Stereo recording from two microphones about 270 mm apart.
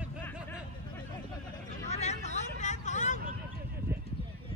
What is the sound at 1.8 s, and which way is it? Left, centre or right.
Vehicle, left.